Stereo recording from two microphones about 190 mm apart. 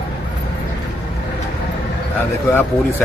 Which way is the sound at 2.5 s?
10° left (ahead or behind).